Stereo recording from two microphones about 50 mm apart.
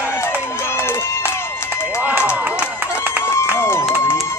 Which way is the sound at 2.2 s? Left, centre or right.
Right.